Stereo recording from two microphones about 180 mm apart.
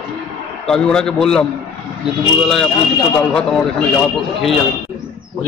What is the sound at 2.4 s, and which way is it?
A man's voice, centre (ahead or behind).